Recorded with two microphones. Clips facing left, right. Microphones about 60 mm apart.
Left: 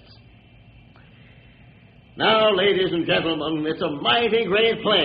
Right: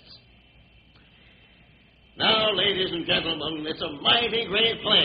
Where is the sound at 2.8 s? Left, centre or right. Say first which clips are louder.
Left 6 dB; centre.